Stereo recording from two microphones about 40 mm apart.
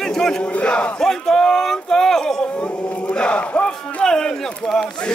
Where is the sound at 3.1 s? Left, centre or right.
Left.